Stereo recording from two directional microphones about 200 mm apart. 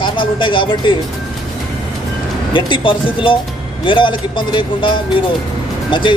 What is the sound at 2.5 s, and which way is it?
Speech, 25° left (ahead or behind).